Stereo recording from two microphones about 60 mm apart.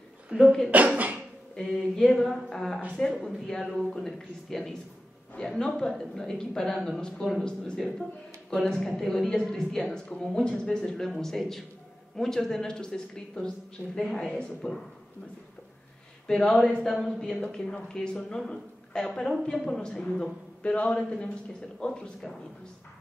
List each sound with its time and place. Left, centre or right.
0.4 s speech: centre
0.7 s speech: right
1.5 s speech: centre
13.8 s a woman's voice: centre
14.2 s speech: centre
16.3 s speech: centre